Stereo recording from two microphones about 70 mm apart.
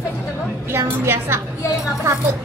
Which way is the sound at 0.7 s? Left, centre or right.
Right.